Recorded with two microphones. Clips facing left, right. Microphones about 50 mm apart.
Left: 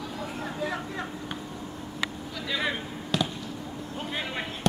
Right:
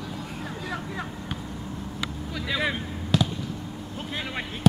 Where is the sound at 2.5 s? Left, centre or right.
Centre.